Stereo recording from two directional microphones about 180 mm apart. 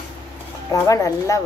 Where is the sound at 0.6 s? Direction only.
20° left (ahead or behind).